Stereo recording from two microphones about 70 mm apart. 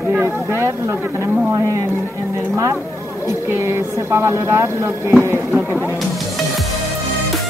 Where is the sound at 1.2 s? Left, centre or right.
Right.